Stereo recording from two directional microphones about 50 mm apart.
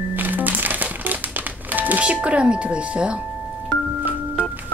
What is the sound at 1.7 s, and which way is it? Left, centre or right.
Doorbell, right.